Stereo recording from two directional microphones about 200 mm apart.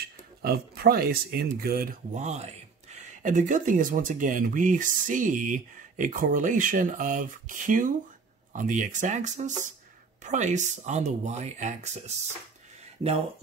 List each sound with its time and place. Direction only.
0.0 s speech: 50° right (ahead or behind); by 11.9 s 35° right (ahead or behind)